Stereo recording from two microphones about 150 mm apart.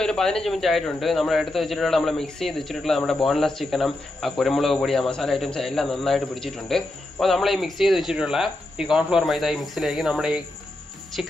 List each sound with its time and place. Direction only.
0.0 s a man's voice: 5° left (ahead or behind)